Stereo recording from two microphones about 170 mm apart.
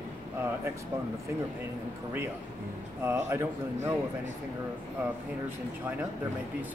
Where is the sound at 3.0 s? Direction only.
15° right (ahead or behind).